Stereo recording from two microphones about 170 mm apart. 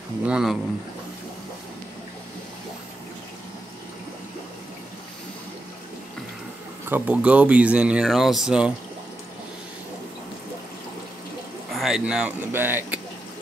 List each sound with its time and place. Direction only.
0.3 s speech: centre (ahead or behind)
6.9 s speech: 5° right (ahead or behind)
11.7 s speech: centre (ahead or behind)